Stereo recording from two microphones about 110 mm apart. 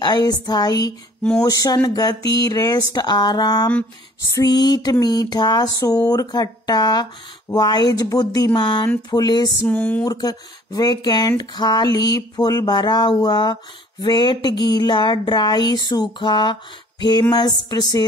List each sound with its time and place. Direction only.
0.0 s speech: 35° left (ahead or behind)
9.7 s speech: 10° left (ahead or behind)
10.0 s speech: 35° left (ahead or behind)